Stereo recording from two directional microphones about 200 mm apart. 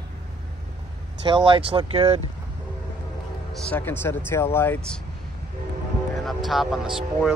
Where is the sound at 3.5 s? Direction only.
10° left (ahead or behind).